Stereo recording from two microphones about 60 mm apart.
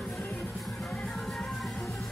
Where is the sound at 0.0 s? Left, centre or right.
Centre.